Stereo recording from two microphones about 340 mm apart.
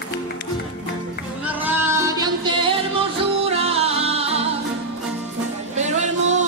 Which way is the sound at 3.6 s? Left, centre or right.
Centre.